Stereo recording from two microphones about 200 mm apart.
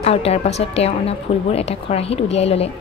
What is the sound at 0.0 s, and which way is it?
Speech, 30° left (ahead or behind).